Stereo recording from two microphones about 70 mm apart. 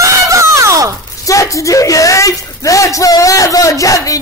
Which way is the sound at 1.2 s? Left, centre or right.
Left.